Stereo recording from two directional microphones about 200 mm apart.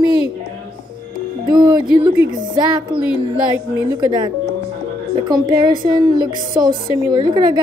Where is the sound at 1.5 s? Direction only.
20° right (ahead or behind).